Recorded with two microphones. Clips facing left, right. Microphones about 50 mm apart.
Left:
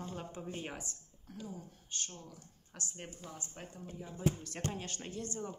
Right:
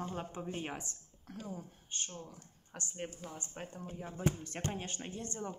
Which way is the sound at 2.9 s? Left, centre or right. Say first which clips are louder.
Right 8 dB; centre.